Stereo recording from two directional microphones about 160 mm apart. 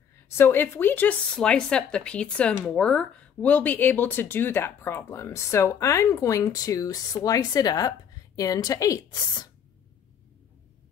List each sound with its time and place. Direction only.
0.3 s a woman's voice: 15° left (ahead or behind)